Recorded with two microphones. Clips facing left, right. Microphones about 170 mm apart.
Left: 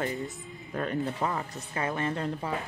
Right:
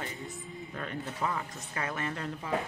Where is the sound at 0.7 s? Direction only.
40° left (ahead or behind).